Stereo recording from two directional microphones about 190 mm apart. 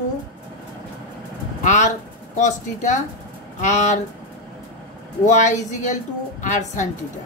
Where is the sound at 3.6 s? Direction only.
40° left (ahead or behind).